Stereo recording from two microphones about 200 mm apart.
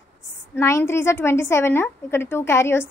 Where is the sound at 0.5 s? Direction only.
15° left (ahead or behind).